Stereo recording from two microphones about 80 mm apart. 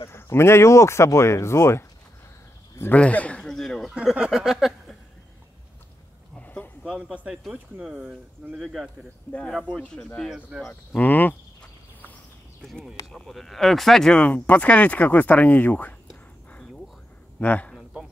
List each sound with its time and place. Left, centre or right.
0.1 s speech: left
2.8 s speech: centre
3.9 s speech: centre
6.4 s a sound: centre
7.1 s speech: centre
9.8 s speech: centre
10.3 s speech: centre
10.9 s speech: left
13.1 s speech: centre; by 15.9 s left
17.4 s a man's voice: left